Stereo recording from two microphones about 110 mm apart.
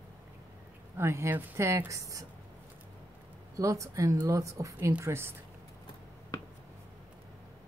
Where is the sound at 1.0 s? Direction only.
25° right (ahead or behind).